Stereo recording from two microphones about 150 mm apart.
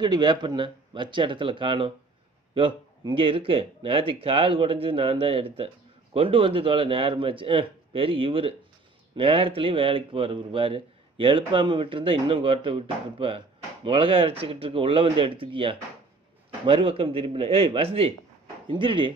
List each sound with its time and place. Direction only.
0.0 s a man's voice: 30° right (ahead or behind)